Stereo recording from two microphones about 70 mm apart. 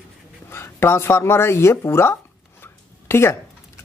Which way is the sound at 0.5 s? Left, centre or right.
Left.